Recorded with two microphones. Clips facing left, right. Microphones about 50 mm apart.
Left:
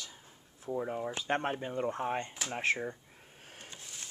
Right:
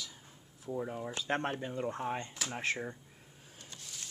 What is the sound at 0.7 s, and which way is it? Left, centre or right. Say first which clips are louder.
Speech: left 3 dB; centre.